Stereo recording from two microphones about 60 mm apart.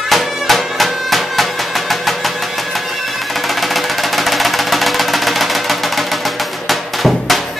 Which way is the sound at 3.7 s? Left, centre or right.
Centre.